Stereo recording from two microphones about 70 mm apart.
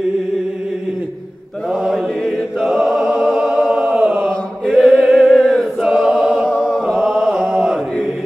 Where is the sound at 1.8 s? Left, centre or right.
Centre.